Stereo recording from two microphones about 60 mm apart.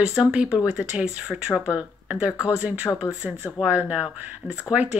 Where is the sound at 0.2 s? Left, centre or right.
Centre.